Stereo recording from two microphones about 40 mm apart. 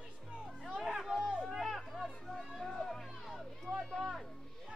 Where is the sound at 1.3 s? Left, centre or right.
Right.